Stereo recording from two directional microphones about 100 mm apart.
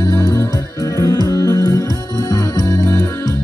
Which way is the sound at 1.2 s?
30° left (ahead or behind).